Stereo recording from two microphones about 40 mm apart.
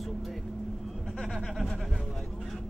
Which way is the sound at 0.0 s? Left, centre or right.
Centre.